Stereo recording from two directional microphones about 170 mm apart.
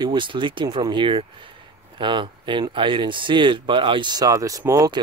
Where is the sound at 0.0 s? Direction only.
30° right (ahead or behind).